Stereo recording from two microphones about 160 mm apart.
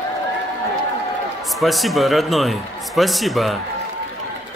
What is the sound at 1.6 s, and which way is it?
Speech, centre (ahead or behind).